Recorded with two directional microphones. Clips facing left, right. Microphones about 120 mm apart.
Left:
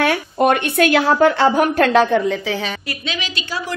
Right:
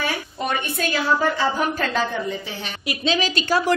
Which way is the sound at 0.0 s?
65° left (ahead or behind).